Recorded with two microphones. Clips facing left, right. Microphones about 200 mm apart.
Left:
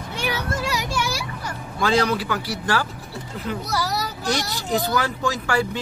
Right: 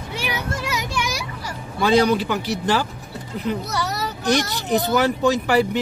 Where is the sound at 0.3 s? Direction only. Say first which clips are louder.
Left 1 dB; 20° right (ahead or behind).